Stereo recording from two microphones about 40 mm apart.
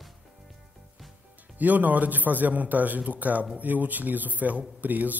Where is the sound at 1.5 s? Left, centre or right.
Right.